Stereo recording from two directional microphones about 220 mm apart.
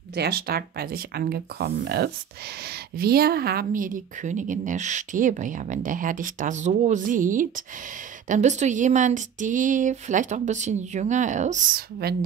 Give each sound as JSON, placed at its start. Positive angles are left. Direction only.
{"t": 0.1, "sound": "a woman's voice", "side_deg": -45}